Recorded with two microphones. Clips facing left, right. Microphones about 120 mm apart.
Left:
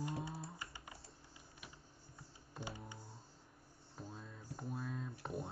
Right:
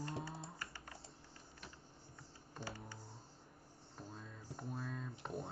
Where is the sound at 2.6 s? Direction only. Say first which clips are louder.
Left 1 dB; 15° left (ahead or behind).